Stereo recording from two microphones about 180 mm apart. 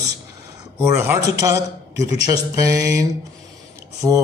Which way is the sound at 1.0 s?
15° right (ahead or behind).